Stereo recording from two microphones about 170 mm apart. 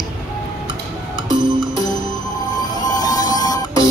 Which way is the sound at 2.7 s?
25° left (ahead or behind).